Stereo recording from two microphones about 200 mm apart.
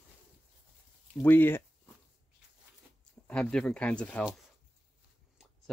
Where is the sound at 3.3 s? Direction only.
5° left (ahead or behind).